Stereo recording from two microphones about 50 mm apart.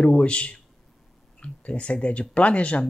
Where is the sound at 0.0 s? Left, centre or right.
Left.